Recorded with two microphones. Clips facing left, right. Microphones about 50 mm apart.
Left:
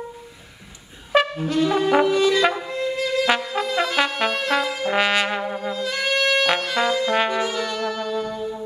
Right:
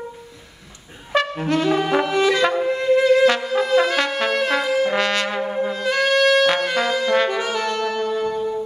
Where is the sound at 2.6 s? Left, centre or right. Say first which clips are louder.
Right 8 dB; right.